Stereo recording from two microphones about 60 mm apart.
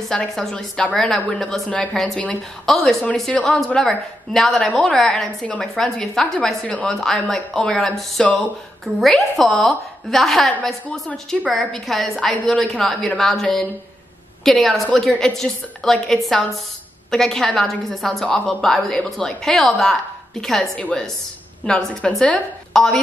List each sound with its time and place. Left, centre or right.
0.1 s a woman's voice: centre
11.5 s a woman's voice: centre; by 22.4 s left
22.7 s speech: centre